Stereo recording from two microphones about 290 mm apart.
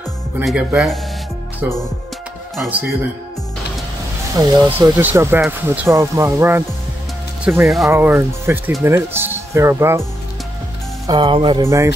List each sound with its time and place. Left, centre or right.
0.4 s speech: centre
2.5 s speech: centre
4.4 s speech: centre
11.1 s speech: centre